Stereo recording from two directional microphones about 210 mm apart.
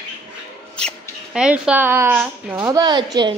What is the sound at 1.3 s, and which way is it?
A woman's voice, 5° right (ahead or behind).